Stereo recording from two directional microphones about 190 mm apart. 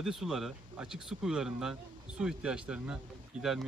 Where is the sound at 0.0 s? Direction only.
Centre (ahead or behind).